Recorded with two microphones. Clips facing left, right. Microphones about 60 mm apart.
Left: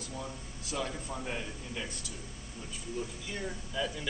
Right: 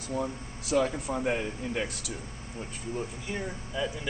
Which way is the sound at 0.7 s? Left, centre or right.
Right.